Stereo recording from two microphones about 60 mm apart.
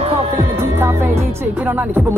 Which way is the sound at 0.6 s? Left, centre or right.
Right.